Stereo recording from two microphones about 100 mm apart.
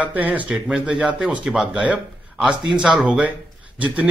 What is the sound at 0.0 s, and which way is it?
A man's voice, 15° right (ahead or behind).